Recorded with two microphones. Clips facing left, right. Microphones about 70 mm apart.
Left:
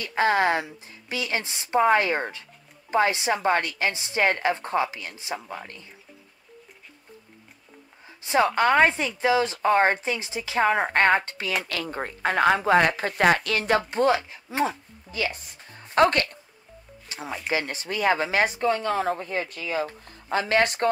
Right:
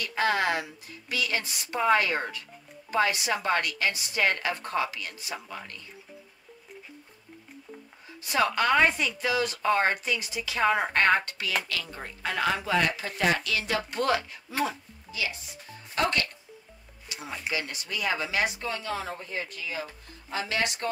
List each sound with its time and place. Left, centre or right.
0.0 s a woman's voice: left
8.2 s a woman's voice: left
11.6 s speech: left
15.0 s speech: left